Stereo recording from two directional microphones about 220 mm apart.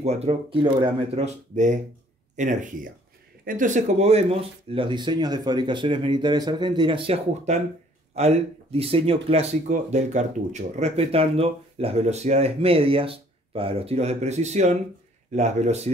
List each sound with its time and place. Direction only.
0.0 s speech: 30° right (ahead or behind)